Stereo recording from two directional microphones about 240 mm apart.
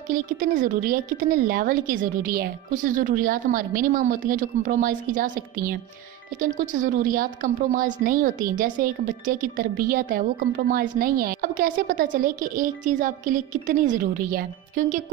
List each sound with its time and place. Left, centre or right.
0.1 s a woman's voice: right